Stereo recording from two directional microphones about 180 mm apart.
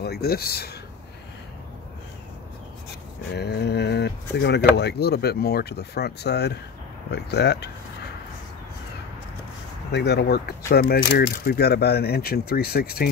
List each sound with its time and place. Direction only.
0.0 s speech: 60° left (ahead or behind)
3.3 s speech: 65° left (ahead or behind)
9.9 s speech: 70° left (ahead or behind)